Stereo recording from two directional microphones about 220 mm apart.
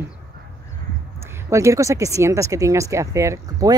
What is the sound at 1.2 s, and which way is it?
Speech, 15° right (ahead or behind).